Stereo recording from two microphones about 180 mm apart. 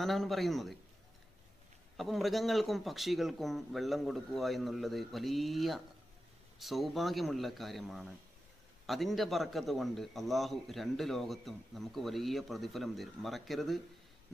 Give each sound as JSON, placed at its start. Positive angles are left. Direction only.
{"t": 0.0, "sound": "a man's voice", "side_deg": 0}
{"t": 2.0, "sound": "a man's voice", "side_deg": 0}